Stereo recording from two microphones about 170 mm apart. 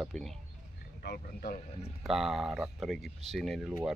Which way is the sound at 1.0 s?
70° left (ahead or behind).